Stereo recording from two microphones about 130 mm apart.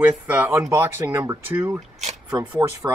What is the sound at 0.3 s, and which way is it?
Speech, 15° right (ahead or behind).